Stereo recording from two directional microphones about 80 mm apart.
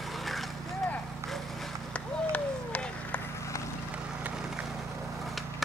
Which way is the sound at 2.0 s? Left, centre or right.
Centre.